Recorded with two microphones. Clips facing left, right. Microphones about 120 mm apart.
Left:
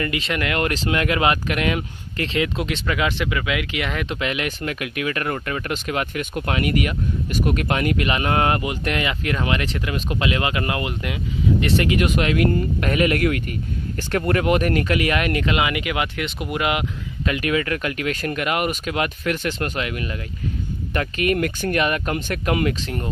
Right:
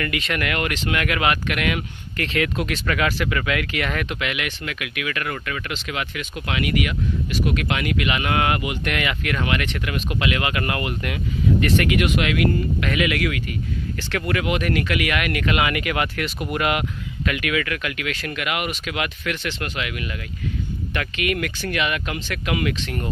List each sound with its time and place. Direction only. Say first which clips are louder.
0.0 s speech: left 1 dB; 25° left (ahead or behind)
4.1 s speech: left 2 dB; 30° left (ahead or behind)